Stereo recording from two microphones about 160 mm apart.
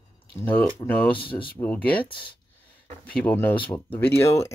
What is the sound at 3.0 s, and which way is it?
Speech, 10° left (ahead or behind).